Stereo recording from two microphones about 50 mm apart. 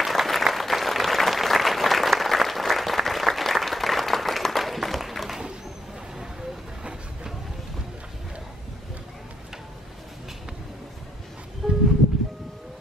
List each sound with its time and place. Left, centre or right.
0.0 s applause: centre
6.8 s train: centre
11.6 s music: centre